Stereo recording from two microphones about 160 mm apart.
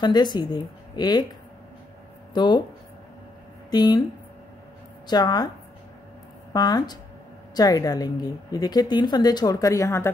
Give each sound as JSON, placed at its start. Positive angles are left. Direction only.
{"t": 0.0, "sound": "a woman's voice", "side_deg": 25}
{"t": 2.3, "sound": "a woman's voice", "side_deg": 30}
{"t": 3.7, "sound": "a woman's voice", "side_deg": 25}
{"t": 5.0, "sound": "a woman's voice", "side_deg": 25}
{"t": 6.5, "sound": "a woman's voice", "side_deg": 25}